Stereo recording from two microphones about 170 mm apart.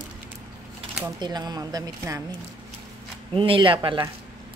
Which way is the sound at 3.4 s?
30° right (ahead or behind).